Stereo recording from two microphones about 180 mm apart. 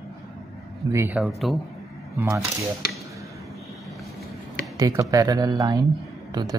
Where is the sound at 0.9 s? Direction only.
15° right (ahead or behind).